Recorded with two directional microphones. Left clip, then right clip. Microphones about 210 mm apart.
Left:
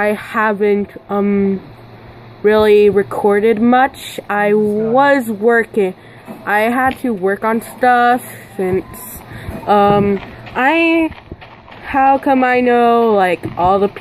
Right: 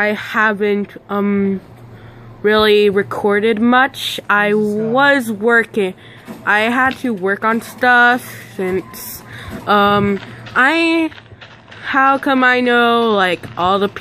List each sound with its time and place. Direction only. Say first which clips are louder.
0.0 s speech: even; 10° right (ahead or behind)
9.4 s a sound: left 1 dB; 15° right (ahead or behind)
11.9 s speech: left 1 dB; 15° right (ahead or behind)